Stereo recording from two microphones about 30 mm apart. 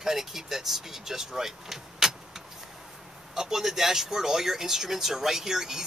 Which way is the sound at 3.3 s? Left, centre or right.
Centre.